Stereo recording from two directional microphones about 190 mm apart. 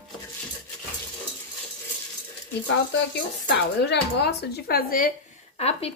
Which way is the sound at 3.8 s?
60° left (ahead or behind).